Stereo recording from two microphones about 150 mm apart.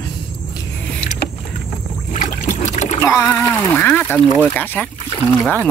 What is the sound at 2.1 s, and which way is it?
Boat, 55° left (ahead or behind).